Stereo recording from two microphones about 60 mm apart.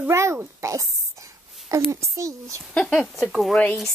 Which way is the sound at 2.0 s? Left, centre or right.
Right.